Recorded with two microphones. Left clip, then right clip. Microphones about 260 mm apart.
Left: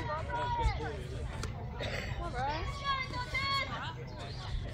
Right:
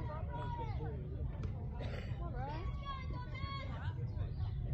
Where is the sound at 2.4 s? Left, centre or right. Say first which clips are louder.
Left 12 dB; left.